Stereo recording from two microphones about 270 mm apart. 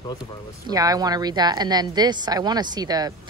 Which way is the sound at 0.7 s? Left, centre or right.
Centre.